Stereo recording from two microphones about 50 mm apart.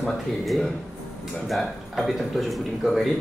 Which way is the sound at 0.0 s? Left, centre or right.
Centre.